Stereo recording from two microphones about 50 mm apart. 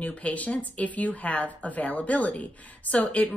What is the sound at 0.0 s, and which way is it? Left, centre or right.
Speech, left.